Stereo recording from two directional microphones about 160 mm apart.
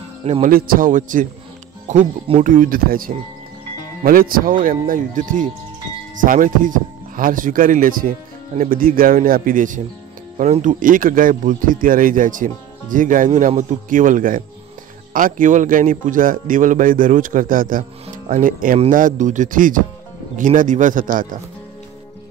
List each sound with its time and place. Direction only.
0.2 s speech: 40° right (ahead or behind)
0.5 s a man's voice: 65° right (ahead or behind)